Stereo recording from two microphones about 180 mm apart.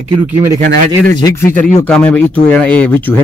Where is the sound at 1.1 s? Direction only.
20° left (ahead or behind).